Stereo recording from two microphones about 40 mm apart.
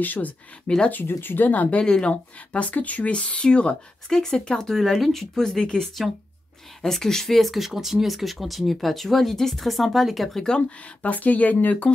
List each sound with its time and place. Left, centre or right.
0.0 s speech: left
1.0 s speech: left
1.5 s speech: left
1.9 s speech: left
2.5 s speech: left
4.1 s speech: centre
5.6 s speech: left
6.8 s speech: centre
11.0 s speech: left